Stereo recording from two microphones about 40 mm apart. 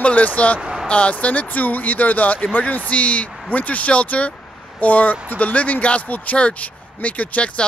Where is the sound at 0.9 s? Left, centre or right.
Left.